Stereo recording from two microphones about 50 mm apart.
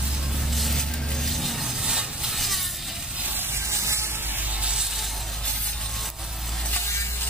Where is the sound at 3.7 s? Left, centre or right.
Right.